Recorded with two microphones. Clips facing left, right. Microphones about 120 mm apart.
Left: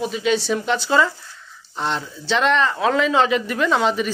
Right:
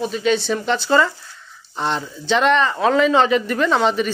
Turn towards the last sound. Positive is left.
turn(degrees=5)  # may be behind; listen again after turning